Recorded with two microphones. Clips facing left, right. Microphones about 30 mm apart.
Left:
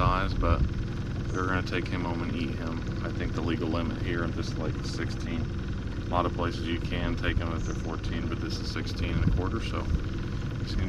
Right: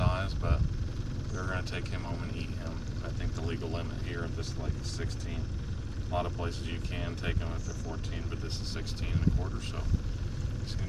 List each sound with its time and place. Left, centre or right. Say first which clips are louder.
0.0 s vehicle: left 7 dB; left
1.4 s speech: left 8 dB; left
6.1 s speech: left 6 dB; left